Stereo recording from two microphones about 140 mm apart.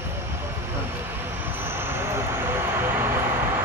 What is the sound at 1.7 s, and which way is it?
Vehicle, 15° right (ahead or behind).